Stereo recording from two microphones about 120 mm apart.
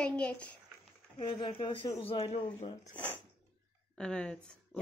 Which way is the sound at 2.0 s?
55° left (ahead or behind).